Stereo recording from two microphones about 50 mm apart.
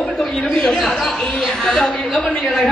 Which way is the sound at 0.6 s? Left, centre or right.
Centre.